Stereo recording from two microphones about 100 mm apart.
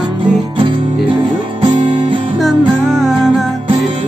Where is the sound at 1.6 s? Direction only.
60° right (ahead or behind).